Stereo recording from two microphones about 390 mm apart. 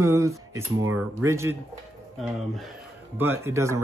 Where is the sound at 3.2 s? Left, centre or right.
Centre.